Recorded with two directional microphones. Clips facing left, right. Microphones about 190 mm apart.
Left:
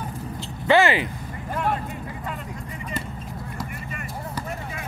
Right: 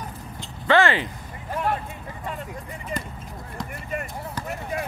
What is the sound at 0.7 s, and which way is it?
Speech, 10° left (ahead or behind).